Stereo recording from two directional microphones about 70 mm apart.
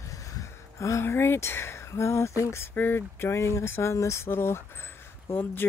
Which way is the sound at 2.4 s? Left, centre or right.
Left.